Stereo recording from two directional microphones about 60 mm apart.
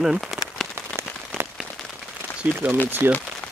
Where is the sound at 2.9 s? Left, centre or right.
Right.